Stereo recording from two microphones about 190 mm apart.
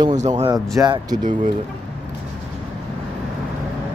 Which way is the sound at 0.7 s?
20° right (ahead or behind).